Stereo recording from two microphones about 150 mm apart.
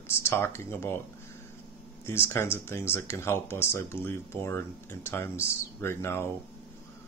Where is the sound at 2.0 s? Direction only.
15° left (ahead or behind).